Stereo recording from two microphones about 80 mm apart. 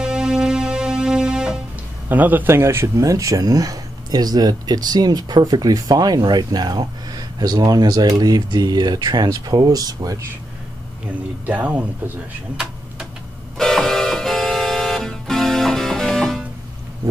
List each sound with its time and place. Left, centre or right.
0.0 s music: centre
2.0 s speech: right
11.4 s speech: centre
13.6 s music: centre